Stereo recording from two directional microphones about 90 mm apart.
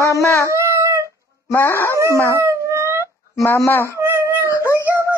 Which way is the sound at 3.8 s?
30° right (ahead or behind).